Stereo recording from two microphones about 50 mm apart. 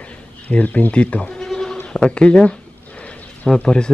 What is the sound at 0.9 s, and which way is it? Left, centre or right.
Speech, left.